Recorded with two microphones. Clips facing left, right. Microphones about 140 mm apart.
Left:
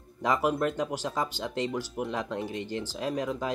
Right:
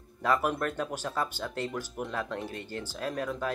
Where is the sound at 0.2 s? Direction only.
15° left (ahead or behind).